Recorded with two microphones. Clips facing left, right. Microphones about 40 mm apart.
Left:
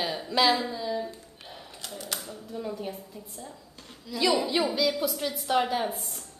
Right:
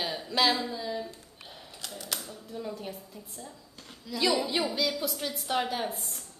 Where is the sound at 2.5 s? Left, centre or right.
Centre.